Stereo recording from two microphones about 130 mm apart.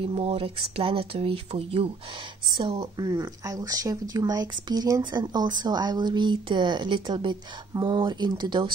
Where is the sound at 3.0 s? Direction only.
30° right (ahead or behind).